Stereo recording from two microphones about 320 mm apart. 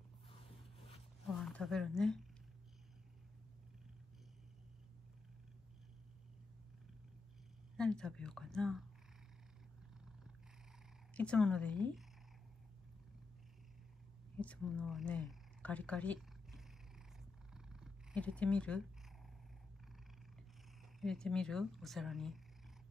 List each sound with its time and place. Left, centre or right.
0.7 s a sound: centre
1.4 s speech: centre
7.7 s speech: centre
11.1 s speech: centre
14.4 s speech: centre
17.2 s purr: centre
21.0 s speech: centre